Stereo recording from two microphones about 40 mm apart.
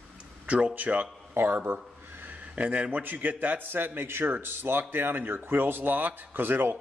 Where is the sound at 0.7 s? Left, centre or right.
Right.